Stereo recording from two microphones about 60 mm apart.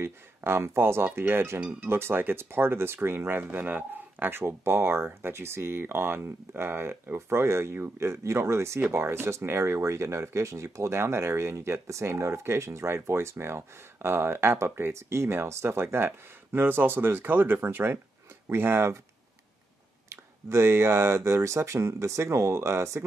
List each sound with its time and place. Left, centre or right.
0.0 s speech: right
1.0 s speech: right
1.6 s speech: centre
1.9 s speech: right
20.1 s speech: right